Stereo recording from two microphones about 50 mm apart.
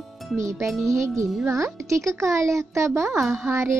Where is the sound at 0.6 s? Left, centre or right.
Centre.